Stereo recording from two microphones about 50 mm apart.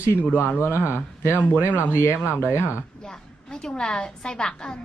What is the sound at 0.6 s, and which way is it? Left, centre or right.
Speech, left.